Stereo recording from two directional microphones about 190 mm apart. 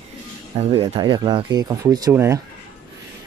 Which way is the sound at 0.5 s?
30° right (ahead or behind).